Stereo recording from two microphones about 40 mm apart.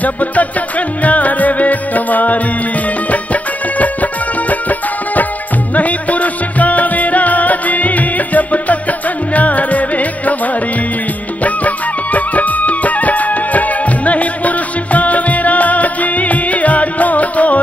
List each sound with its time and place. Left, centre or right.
0.0 s music: left
3.7 s music: left